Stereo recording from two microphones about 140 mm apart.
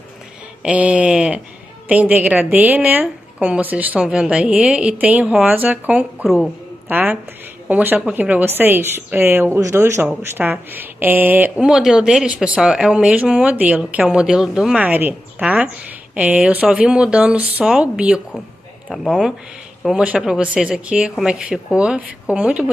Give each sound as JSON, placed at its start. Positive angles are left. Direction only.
{"t": 0.6, "sound": "a woman's voice", "side_deg": -10}
{"t": 6.9, "sound": "a woman's voice", "side_deg": -10}